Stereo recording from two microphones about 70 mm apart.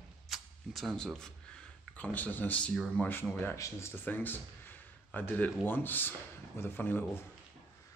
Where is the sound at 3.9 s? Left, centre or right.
Left.